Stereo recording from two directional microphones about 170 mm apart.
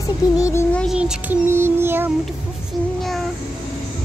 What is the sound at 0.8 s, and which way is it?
Child singing, 5° right (ahead or behind).